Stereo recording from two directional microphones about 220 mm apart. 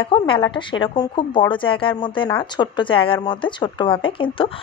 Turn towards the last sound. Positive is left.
turn(degrees=25)  # may be behind; listen again after turning